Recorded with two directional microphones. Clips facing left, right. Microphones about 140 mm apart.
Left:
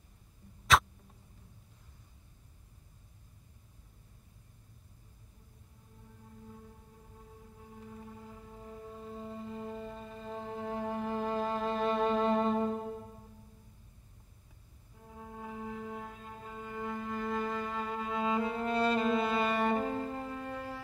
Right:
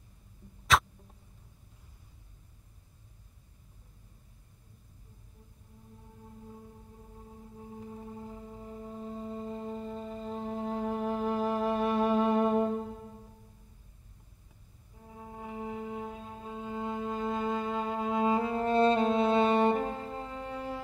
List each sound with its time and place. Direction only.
0.7 s a sound: centre (ahead or behind)
7.7 s music: 25° right (ahead or behind)
15.0 s music: 15° right (ahead or behind)